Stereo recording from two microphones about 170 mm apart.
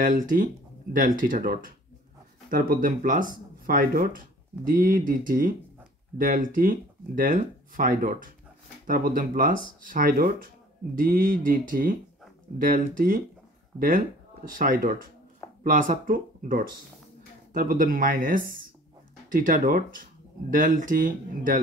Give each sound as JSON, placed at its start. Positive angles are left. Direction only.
{"t": 0.0, "sound": "speech", "side_deg": -50}